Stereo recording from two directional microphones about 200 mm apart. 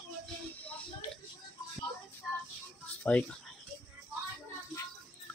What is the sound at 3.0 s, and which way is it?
Speech, 5° left (ahead or behind).